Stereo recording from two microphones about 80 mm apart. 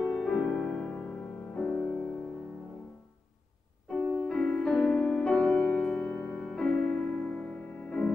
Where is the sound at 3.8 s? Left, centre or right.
Centre.